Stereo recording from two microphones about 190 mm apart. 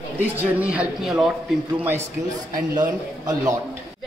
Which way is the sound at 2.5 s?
45° right (ahead or behind).